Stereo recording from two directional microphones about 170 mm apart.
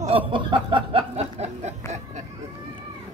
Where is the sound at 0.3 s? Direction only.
30° right (ahead or behind).